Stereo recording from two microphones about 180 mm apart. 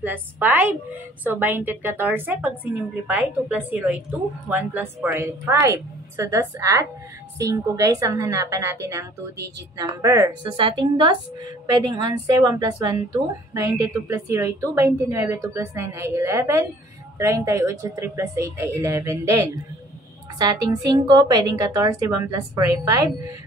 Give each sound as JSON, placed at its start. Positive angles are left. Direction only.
{"t": 0.0, "sound": "a woman's voice", "side_deg": -10}
{"t": 10.0, "sound": "a woman's voice", "side_deg": -15}
{"t": 10.5, "sound": "a woman's voice", "side_deg": -30}